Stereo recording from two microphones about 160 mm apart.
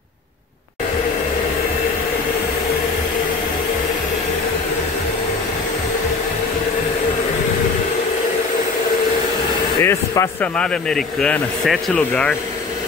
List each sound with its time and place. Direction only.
9.8 s speech: 15° left (ahead or behind)
10.5 s speech: 5° left (ahead or behind)